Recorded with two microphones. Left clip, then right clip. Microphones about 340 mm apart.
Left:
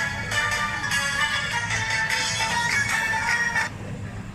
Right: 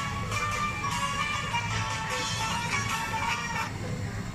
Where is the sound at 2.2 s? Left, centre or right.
Left.